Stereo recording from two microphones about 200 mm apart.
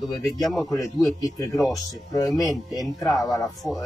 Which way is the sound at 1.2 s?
15° left (ahead or behind).